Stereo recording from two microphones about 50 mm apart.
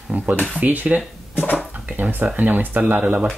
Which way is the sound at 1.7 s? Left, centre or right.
Right.